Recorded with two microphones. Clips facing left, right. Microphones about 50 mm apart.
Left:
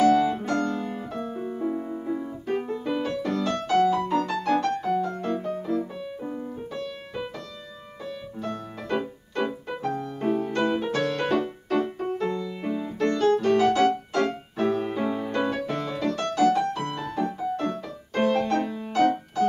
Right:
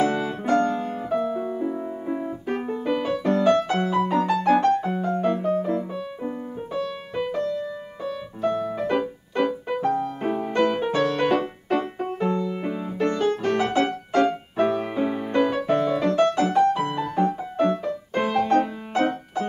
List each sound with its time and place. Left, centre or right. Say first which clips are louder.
0.0 s music: left 3 dB; centre
1.3 s music: right 5 dB; right
1.6 s music: right 1 dB; centre
2.0 s piano: right 2 dB; right
2.6 s music: right 3 dB; centre
5.7 s music: right 2 dB; right
8.0 s music: right 7 dB; centre